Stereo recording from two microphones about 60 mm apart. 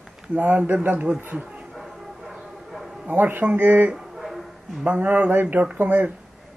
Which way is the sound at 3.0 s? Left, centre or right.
Right.